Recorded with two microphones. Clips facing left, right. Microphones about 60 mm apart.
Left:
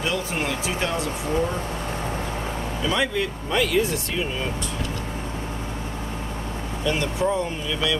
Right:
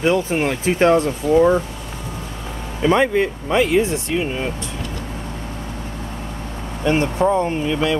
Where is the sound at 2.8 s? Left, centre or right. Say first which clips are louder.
Right 9 dB; right.